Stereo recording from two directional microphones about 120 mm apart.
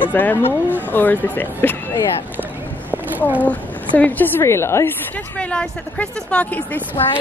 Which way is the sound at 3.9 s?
15° left (ahead or behind).